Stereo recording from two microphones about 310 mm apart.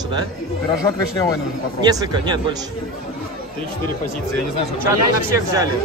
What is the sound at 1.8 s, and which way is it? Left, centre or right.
Speech, centre.